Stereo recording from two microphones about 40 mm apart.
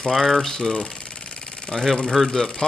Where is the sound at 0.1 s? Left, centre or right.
Centre.